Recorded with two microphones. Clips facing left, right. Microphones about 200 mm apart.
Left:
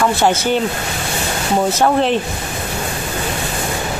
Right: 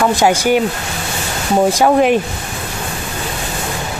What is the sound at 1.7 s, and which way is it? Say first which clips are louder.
Speech: right 4 dB; 10° right (ahead or behind).